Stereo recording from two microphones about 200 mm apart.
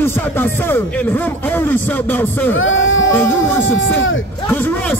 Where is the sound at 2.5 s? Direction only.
75° left (ahead or behind).